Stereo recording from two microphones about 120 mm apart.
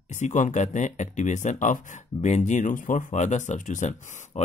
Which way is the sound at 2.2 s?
75° left (ahead or behind).